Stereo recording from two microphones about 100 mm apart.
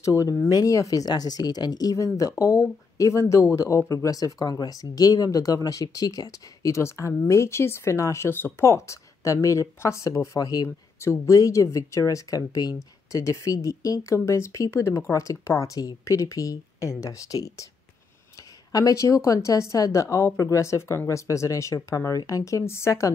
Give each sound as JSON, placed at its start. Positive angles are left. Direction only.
{"t": 0.2, "sound": "a woman's voice", "side_deg": 35}
{"t": 18.7, "sound": "a woman's voice", "side_deg": 35}